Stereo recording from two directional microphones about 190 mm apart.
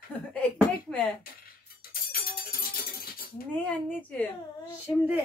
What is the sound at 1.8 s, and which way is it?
Music, 50° left (ahead or behind).